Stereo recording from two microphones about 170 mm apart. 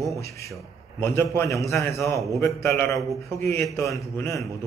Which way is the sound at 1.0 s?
15° left (ahead or behind).